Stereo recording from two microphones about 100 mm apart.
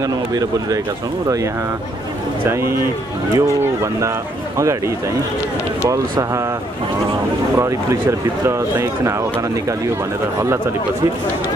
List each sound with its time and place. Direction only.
0.0 s speech: 40° right (ahead or behind)
2.4 s speech: 25° right (ahead or behind)
7.5 s speech: 30° right (ahead or behind)